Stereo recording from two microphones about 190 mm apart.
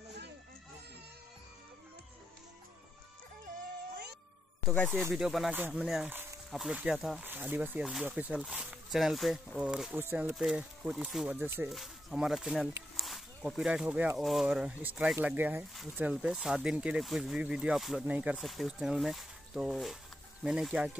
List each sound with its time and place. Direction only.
4.6 s speech: centre (ahead or behind)